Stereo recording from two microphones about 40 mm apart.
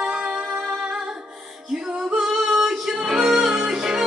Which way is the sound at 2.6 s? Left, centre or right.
Centre.